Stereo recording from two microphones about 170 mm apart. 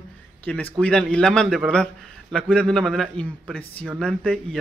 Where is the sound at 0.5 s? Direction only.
5° left (ahead or behind).